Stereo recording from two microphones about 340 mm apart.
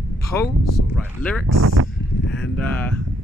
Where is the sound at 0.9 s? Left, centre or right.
Centre.